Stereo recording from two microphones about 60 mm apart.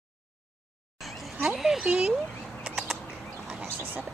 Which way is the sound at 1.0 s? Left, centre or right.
Centre.